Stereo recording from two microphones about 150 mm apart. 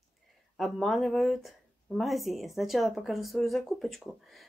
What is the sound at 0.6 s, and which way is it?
Speech, centre (ahead or behind).